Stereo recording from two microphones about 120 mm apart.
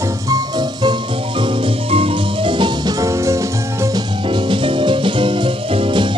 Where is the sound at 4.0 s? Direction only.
45° right (ahead or behind).